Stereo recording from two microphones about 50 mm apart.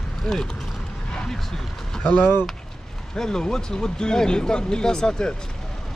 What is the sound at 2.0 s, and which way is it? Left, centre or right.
Speech, left.